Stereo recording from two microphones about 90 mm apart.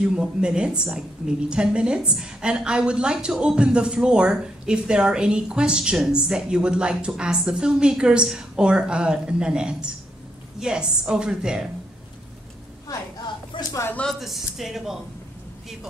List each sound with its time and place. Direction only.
0.0 s a woman's voice: 10° right (ahead or behind)
13.5 s a sound: 65° left (ahead or behind)
14.2 s speech: centre (ahead or behind)